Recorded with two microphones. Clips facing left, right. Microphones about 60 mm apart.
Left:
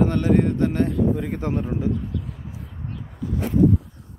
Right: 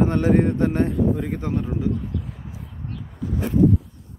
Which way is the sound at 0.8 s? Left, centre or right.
Centre.